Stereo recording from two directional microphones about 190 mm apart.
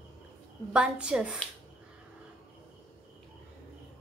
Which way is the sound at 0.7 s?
5° right (ahead or behind).